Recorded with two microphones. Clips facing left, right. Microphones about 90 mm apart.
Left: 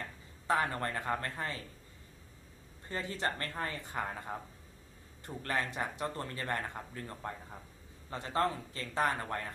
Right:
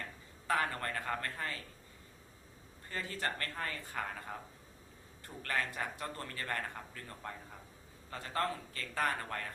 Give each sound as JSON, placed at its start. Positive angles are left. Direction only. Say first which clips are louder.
{"t": 0.5, "sound": "speech", "louder": "left 2 dB", "side_deg": 25}
{"t": 2.9, "sound": "speech", "louder": "left 3 dB", "side_deg": 20}